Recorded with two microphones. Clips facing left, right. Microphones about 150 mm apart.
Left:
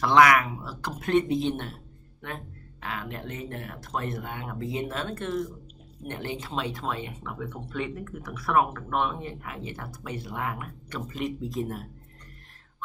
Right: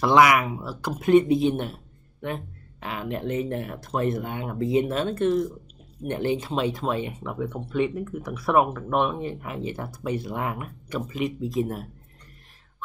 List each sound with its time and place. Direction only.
0.0 s speech: 10° right (ahead or behind)